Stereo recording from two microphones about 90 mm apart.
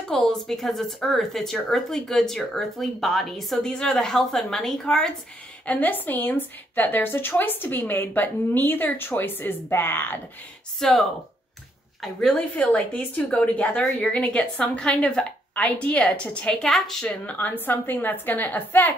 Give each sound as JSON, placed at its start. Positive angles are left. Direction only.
{"t": 0.1, "sound": "speech", "side_deg": 5}
{"t": 5.7, "sound": "a woman's voice", "side_deg": 20}
{"t": 10.8, "sound": "speech", "side_deg": 5}
{"t": 17.1, "sound": "a woman's voice", "side_deg": 15}